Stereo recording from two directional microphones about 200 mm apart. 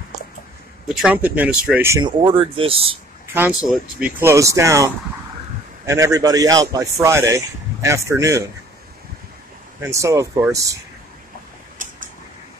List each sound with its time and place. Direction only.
0.8 s a man's voice: 5° right (ahead or behind)
2.2 s speech: 25° right (ahead or behind)
3.3 s a man's voice: 5° right (ahead or behind)
5.9 s a man's voice: 15° right (ahead or behind)
9.8 s a man's voice: 15° right (ahead or behind)
11.8 s a sound: 40° right (ahead or behind)